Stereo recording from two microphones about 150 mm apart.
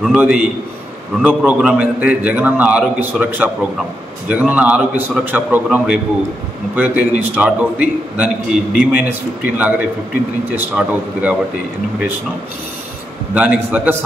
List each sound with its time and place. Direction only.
0.0 s a man's voice: 5° right (ahead or behind)
13.3 s a man's voice: 10° right (ahead or behind)